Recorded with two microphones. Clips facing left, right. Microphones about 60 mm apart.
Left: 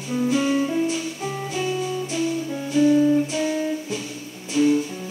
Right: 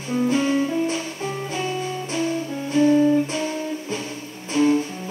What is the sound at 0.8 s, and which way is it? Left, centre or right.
Music, right.